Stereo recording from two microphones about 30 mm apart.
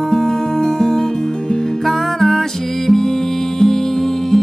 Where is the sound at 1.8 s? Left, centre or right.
Centre.